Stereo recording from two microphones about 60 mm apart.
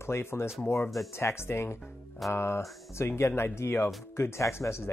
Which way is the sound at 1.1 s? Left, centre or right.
Left.